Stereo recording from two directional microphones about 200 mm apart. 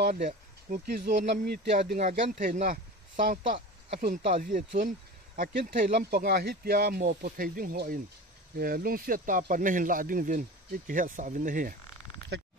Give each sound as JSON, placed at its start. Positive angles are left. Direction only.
{"t": 0.0, "sound": "speech", "side_deg": -45}
{"t": 1.9, "sound": "speech", "side_deg": -40}
{"t": 4.0, "sound": "speech", "side_deg": -45}